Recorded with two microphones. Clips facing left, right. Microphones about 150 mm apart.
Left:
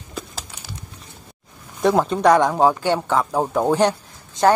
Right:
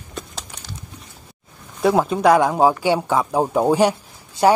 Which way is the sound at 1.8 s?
5° right (ahead or behind).